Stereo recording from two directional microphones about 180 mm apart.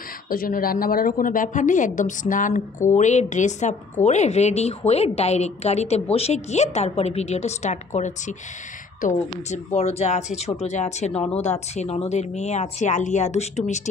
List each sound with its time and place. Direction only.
0.3 s a woman's voice: 55° left (ahead or behind)